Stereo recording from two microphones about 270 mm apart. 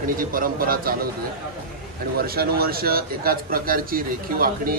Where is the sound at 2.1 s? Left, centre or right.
Right.